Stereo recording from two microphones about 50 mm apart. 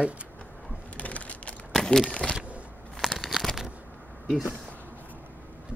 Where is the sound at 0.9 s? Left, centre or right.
Left.